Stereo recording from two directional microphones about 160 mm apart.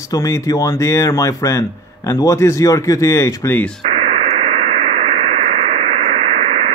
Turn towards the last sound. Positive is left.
turn(degrees=-40)  # may be behind; listen again after turning